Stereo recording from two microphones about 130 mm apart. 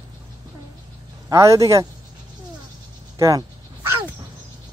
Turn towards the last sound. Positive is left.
turn(degrees=-20)  # may be behind; listen again after turning